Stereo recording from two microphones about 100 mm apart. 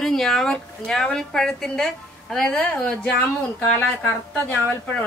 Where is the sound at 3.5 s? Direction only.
20° left (ahead or behind).